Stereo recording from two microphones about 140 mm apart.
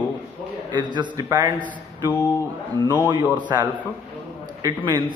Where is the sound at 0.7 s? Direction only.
30° right (ahead or behind).